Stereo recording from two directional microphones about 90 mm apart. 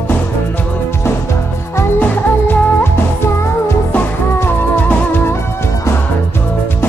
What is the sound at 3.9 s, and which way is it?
Music, 20° left (ahead or behind).